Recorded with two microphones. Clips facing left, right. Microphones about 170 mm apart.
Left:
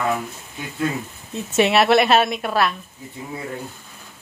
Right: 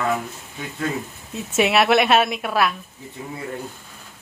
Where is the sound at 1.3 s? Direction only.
5° right (ahead or behind).